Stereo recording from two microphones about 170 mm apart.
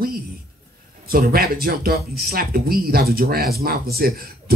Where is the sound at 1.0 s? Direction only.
60° right (ahead or behind).